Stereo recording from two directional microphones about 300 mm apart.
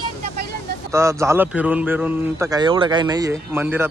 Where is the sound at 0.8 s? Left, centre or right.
Centre.